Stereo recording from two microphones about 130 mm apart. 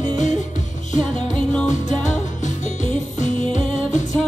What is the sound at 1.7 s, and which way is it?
Music, 70° left (ahead or behind).